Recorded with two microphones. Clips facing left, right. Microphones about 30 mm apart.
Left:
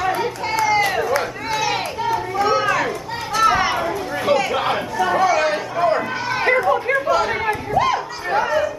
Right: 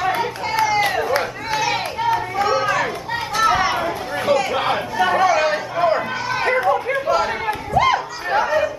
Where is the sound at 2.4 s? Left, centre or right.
Centre.